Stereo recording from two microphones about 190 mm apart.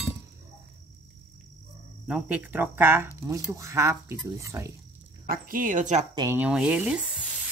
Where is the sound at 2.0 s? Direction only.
5° right (ahead or behind).